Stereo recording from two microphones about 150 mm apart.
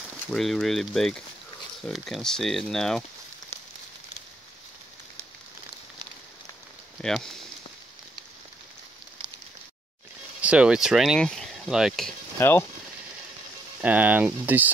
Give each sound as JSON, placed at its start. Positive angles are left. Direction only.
{"t": 0.3, "sound": "speech", "side_deg": 0}
{"t": 3.5, "sound": "a sound", "side_deg": 15}
{"t": 7.0, "sound": "speech", "side_deg": 5}
{"t": 10.4, "sound": "speech", "side_deg": -5}
{"t": 12.4, "sound": "speech", "side_deg": 15}
{"t": 13.7, "sound": "speech", "side_deg": -10}